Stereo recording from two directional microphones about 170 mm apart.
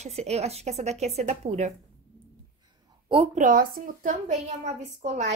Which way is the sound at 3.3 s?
55° right (ahead or behind).